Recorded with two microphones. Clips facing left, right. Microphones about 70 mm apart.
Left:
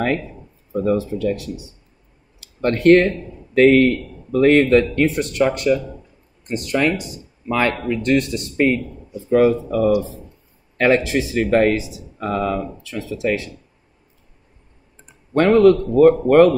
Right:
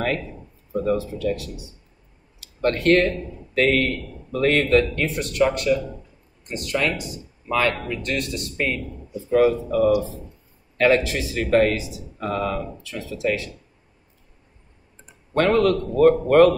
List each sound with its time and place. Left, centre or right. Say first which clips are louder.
0.8 s a man's voice: left 4 dB; left
2.6 s a man's voice: left 5 dB; left
15.3 s a man's voice: left 6 dB; left